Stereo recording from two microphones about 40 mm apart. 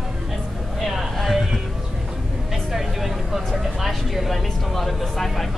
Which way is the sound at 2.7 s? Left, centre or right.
Centre.